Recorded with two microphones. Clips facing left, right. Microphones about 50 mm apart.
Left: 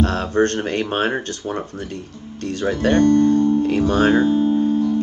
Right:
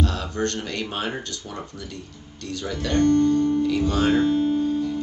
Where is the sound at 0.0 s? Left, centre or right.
Left.